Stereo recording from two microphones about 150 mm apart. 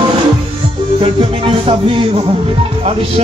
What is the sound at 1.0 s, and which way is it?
Speech, 35° right (ahead or behind).